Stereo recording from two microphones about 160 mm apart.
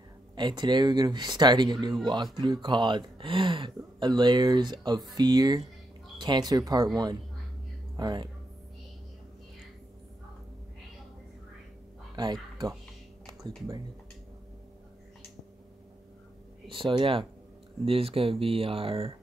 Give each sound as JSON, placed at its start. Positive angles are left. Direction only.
{"t": 0.4, "sound": "speech", "side_deg": -25}
{"t": 7.9, "sound": "speech", "side_deg": -25}
{"t": 12.2, "sound": "speech", "side_deg": -25}
{"t": 16.6, "sound": "speech", "side_deg": -30}